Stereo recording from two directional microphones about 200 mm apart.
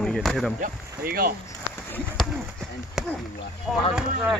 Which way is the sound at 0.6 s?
50° right (ahead or behind).